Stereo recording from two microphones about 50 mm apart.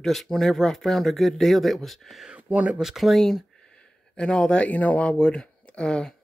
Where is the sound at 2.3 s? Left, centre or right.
Right.